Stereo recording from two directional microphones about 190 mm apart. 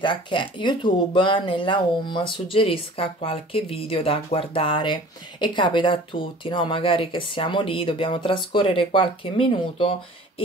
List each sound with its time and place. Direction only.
0.0 s speech: 25° left (ahead or behind)